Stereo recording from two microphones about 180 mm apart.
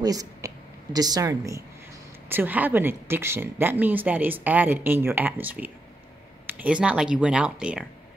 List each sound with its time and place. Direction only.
0.0 s speech: 20° right (ahead or behind)